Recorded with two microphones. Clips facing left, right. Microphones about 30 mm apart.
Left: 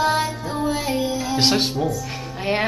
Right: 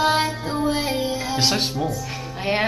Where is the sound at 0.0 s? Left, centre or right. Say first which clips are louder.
Right 1 dB; right.